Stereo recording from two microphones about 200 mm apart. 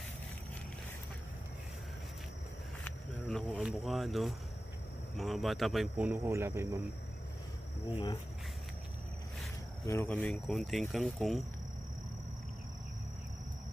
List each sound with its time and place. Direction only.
2.8 s a sound: 5° left (ahead or behind)
5.1 s speech: centre (ahead or behind)
7.9 s speech: 20° left (ahead or behind)
9.8 s speech: 10° left (ahead or behind)